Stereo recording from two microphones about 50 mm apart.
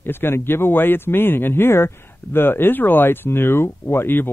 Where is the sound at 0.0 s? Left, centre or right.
Left.